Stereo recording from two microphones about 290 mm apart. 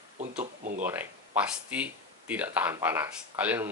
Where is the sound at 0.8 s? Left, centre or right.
Centre.